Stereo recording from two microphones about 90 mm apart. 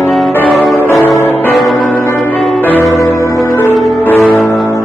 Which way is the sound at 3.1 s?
35° left (ahead or behind).